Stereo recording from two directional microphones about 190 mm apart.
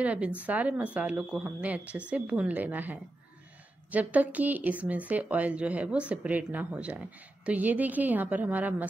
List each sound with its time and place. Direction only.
0.0 s speech: 5° right (ahead or behind)